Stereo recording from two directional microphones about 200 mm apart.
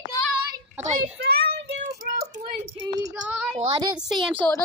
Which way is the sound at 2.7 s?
20° right (ahead or behind).